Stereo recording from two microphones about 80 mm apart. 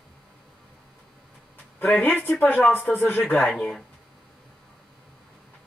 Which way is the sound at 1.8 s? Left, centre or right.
Centre.